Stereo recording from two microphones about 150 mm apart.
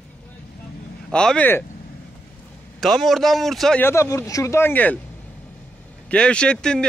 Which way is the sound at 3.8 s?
20° left (ahead or behind).